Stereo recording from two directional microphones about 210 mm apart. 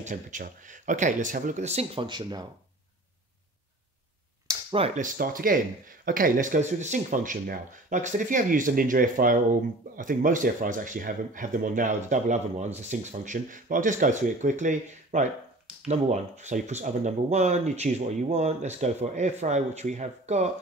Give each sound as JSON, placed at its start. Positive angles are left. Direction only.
{"t": 0.0, "sound": "speech", "side_deg": -35}
{"t": 4.5, "sound": "speech", "side_deg": -25}